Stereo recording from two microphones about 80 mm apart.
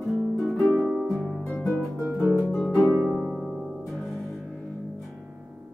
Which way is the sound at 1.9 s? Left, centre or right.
Centre.